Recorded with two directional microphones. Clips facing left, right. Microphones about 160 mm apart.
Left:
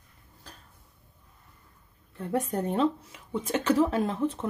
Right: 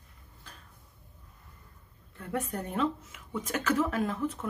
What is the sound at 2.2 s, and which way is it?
Speech, 30° left (ahead or behind).